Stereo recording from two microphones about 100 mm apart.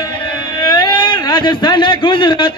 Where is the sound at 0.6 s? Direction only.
45° left (ahead or behind).